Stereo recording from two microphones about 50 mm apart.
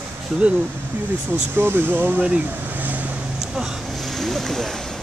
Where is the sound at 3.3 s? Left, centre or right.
Centre.